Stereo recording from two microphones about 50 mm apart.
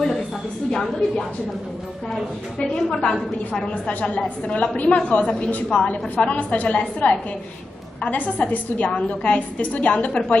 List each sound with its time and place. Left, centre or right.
0.7 s a woman's voice: centre
2.7 s a woman's voice: centre